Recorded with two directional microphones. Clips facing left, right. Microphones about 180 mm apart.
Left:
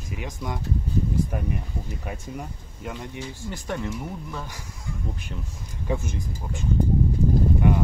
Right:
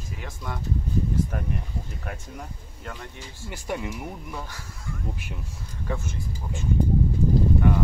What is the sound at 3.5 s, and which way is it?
Speech, 10° right (ahead or behind).